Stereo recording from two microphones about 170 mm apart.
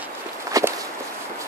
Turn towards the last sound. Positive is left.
turn(degrees=-20)  # may be behind; listen again after turning